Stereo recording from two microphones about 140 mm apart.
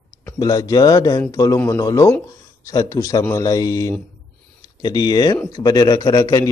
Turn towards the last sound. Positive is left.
turn(degrees=25)  # may be behind; listen again after turning